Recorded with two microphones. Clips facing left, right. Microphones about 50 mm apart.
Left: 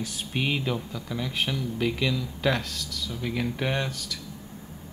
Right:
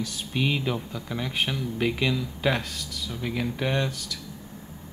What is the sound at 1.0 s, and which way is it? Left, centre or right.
Speech, right.